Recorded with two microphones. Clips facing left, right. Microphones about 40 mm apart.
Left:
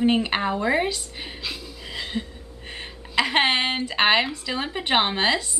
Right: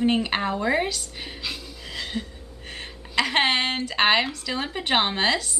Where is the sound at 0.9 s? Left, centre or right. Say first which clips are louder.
Left 1 dB; centre.